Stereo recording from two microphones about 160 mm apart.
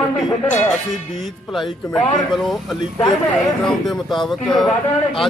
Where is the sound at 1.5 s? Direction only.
Centre (ahead or behind).